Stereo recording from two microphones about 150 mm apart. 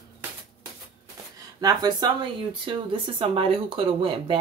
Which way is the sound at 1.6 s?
25° right (ahead or behind).